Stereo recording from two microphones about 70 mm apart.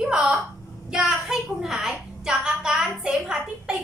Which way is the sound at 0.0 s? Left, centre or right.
Centre.